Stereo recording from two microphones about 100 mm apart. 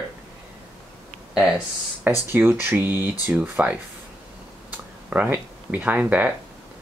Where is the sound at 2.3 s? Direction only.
20° right (ahead or behind).